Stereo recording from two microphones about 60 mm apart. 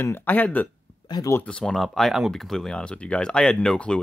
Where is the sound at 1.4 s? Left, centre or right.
Centre.